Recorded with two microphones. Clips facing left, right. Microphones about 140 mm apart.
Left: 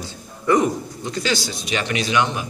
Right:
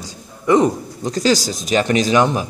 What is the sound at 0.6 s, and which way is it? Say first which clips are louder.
Speech: right 4 dB; 40° right (ahead or behind).